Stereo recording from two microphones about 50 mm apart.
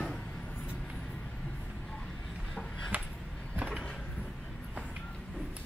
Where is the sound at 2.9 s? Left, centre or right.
Right.